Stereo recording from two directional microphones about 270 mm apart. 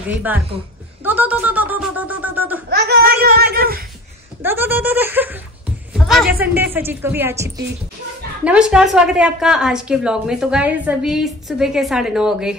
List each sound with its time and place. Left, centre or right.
1.0 s a sound: centre
2.7 s a child's voice: right
4.4 s a woman's voice: centre